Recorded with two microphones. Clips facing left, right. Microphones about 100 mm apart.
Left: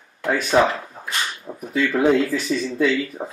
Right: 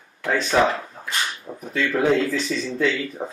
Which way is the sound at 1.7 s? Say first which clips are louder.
Left 2 dB; 10° left (ahead or behind).